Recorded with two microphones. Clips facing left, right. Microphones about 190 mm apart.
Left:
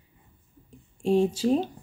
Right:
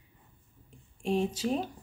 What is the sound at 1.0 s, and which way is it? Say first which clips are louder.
Speech: left 7 dB; 30° left (ahead or behind).